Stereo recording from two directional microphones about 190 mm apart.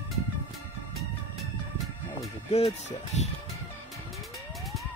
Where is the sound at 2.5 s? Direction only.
30° left (ahead or behind).